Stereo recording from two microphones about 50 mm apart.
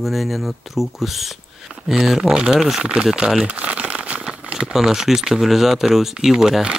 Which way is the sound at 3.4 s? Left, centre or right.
Right.